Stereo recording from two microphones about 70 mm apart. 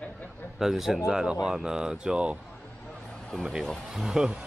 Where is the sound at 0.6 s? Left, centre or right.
Centre.